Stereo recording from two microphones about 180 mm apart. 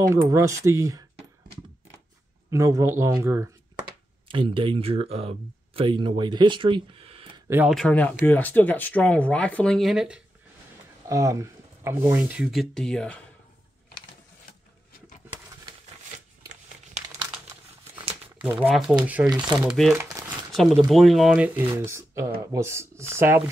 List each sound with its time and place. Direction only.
0.3 s speech: 15° right (ahead or behind)
2.5 s speech: 15° right (ahead or behind); by 7.4 s 30° right (ahead or behind)
7.4 s speech: 10° right (ahead or behind)
7.7 s speech: 5° left (ahead or behind)
11.1 s speech: 15° right (ahead or behind); by 13.2 s 5° left (ahead or behind)
18.6 s speech: centre (ahead or behind)
19.2 s speech: 25° right (ahead or behind)
19.6 s speech: 5° right (ahead or behind)